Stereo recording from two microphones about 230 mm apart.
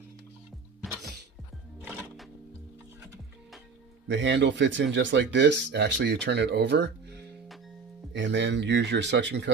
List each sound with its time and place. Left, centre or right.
4.1 s speech: right